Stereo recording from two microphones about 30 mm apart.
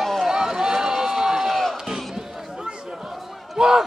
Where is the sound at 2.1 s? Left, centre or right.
Right.